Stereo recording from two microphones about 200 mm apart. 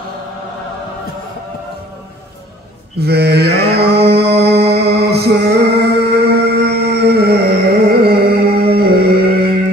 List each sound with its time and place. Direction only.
3.0 s mantra: 55° right (ahead or behind)
4.1 s music: 55° right (ahead or behind)
8.7 s a sound: 50° right (ahead or behind)